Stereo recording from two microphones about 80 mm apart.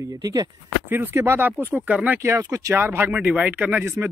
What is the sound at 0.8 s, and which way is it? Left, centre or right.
Speech, right.